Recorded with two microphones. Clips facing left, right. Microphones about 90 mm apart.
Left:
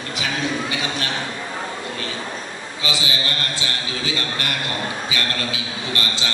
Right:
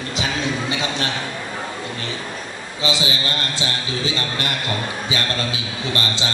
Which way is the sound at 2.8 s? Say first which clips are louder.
Right 3 dB; 25° right (ahead or behind).